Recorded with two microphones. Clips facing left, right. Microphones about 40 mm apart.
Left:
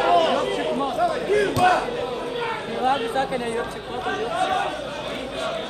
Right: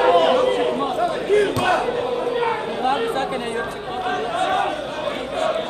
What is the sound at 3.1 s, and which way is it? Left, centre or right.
Chatter, right.